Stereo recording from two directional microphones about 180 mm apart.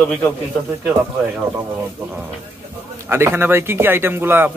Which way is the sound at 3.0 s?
10° right (ahead or behind).